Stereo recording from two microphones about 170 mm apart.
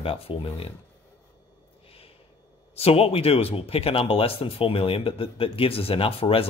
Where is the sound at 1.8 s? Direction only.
35° left (ahead or behind).